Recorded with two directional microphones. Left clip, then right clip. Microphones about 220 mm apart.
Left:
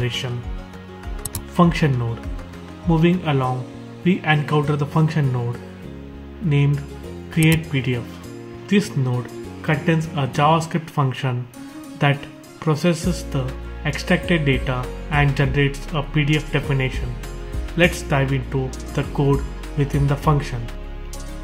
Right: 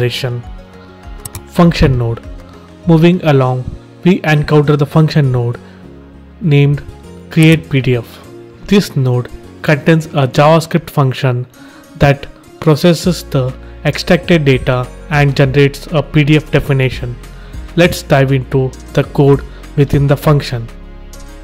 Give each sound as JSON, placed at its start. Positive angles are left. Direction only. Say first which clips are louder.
{"t": 0.0, "sound": "speech", "louder": "right 9 dB", "side_deg": -45}
{"t": 1.5, "sound": "speech", "louder": "right 7 dB", "side_deg": -40}